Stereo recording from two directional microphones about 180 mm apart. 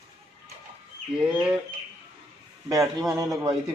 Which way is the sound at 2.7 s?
20° right (ahead or behind).